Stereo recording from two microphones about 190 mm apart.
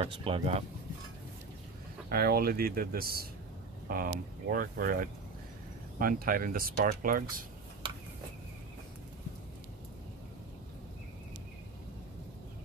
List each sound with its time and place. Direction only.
0.0 s speech: 30° right (ahead or behind)
2.0 s speech: 50° right (ahead or behind)